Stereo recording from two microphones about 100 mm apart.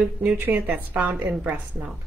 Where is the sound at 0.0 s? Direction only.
10° right (ahead or behind).